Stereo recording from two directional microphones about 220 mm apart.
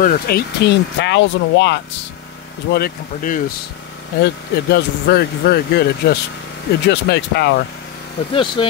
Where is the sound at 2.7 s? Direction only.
40° left (ahead or behind).